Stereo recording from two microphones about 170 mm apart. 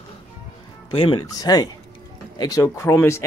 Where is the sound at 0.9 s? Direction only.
30° left (ahead or behind).